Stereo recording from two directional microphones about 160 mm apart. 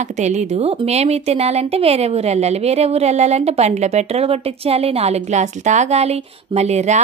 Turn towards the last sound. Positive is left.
turn(degrees=-45)  # may be behind; listen again after turning